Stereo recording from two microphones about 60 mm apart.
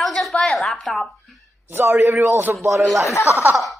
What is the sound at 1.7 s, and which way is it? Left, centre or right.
Speech, right.